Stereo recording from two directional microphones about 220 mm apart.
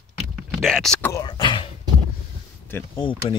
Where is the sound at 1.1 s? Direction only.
20° left (ahead or behind).